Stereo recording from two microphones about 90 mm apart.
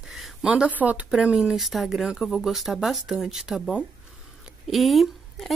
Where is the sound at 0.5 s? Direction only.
15° right (ahead or behind).